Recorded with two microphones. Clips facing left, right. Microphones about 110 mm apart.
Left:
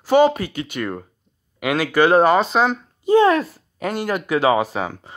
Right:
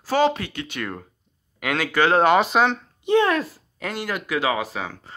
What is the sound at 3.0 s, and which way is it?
Speech, 30° left (ahead or behind).